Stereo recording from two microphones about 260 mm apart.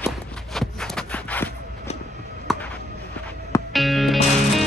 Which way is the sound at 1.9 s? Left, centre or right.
Left.